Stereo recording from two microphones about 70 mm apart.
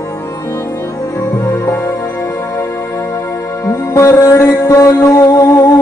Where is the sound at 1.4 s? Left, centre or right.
Left.